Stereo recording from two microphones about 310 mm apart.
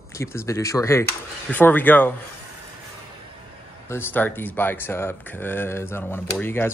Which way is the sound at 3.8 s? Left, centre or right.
Centre.